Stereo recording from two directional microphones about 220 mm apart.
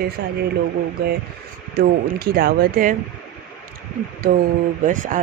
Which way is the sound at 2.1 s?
45° right (ahead or behind).